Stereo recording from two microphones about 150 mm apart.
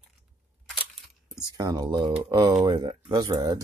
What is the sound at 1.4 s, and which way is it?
Speech, 25° right (ahead or behind).